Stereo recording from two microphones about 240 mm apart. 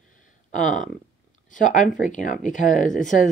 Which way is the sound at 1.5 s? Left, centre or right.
Left.